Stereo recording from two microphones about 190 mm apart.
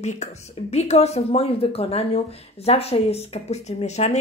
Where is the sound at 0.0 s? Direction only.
35° left (ahead or behind).